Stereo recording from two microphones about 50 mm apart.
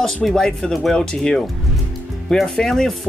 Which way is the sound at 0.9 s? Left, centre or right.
Centre.